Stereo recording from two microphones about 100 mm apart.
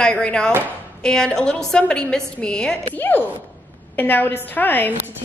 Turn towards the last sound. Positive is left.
turn(degrees=20)  # may be behind; listen again after turning